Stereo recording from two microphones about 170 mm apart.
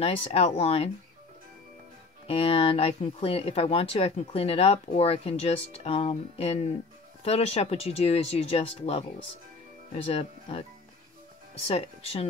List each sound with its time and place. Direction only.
0.0 s speech: 35° left (ahead or behind)
2.2 s speech: 35° left (ahead or behind)
10.0 s speech: 35° left (ahead or behind)
11.6 s speech: 35° left (ahead or behind)